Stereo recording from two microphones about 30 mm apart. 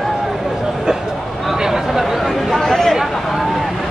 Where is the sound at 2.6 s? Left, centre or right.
Centre.